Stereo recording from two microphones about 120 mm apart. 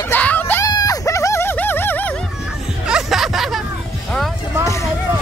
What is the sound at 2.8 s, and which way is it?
Music, 5° right (ahead or behind).